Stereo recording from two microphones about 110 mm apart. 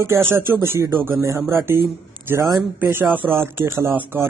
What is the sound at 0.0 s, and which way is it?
A man's voice, 20° right (ahead or behind).